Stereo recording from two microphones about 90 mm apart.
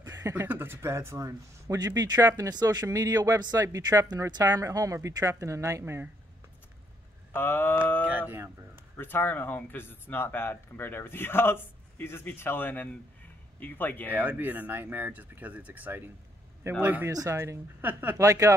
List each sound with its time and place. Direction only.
0.0 s speech: 25° right (ahead or behind)
7.3 s speech: 25° left (ahead or behind)
8.0 s a sound: 15° right (ahead or behind)
8.9 s speech: 25° left (ahead or behind)
14.1 s speech: 20° right (ahead or behind)
17.1 s speech: 40° right (ahead or behind)
17.4 s speech: 25° right (ahead or behind)